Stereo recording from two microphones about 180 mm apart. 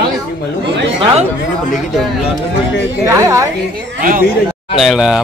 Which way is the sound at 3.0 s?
20° right (ahead or behind).